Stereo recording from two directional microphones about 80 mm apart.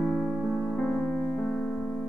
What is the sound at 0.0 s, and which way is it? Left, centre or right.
Music, centre.